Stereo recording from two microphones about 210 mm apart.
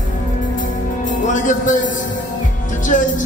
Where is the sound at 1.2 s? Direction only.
35° left (ahead or behind).